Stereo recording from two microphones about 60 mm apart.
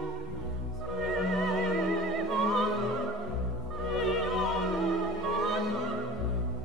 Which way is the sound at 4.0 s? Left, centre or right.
Centre.